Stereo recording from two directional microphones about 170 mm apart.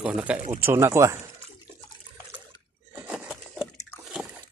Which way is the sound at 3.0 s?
5° right (ahead or behind).